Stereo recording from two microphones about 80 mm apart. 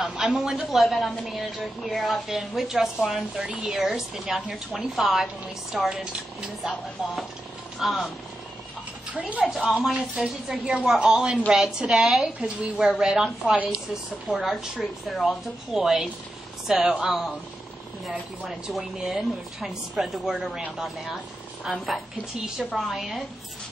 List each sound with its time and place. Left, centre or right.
0.0 s a woman's voice: centre
9.1 s a woman's voice: centre
9.5 s a woman's voice: centre
14.8 s a woman's voice: centre
18.4 s a woman's voice: centre